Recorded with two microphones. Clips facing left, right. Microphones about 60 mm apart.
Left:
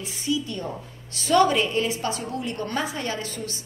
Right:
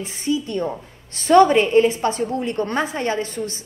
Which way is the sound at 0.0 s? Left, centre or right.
Right.